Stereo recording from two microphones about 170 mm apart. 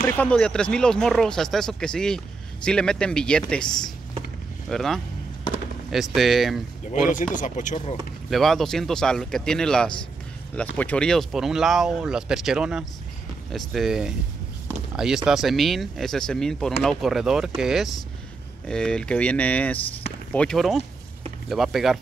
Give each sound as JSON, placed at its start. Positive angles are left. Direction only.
{"t": 0.0, "sound": "speech", "side_deg": 10}
{"t": 7.3, "sound": "speech", "side_deg": 50}
{"t": 8.3, "sound": "speech", "side_deg": 0}